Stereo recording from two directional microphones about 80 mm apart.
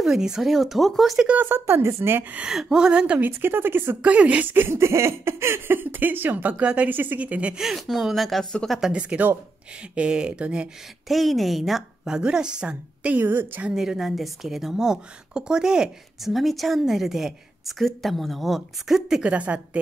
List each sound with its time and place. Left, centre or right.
0.0 s a woman's voice: centre
1.2 s a woman's voice: right
2.4 s a woman's voice: centre
7.6 s a woman's voice: centre
8.7 s a woman's voice: centre
11.1 s a woman's voice: centre; by 13.7 s right
13.7 s a woman's voice: centre
19.3 s a woman's voice: centre